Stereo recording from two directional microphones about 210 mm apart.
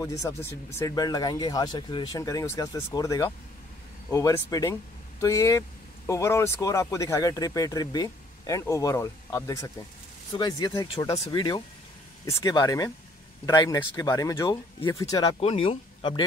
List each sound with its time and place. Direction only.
0.0 s speech: 15° left (ahead or behind)